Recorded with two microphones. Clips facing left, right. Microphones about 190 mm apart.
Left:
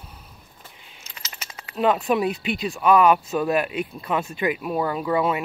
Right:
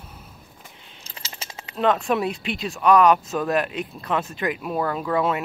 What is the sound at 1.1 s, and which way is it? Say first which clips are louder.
Keys jangling: right 2 dB; 30° right (ahead or behind).